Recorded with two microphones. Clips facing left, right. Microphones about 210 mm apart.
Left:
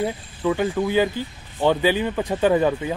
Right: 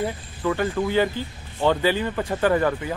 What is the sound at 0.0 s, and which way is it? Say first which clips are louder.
Speech: left 2 dB; 10° left (ahead or behind).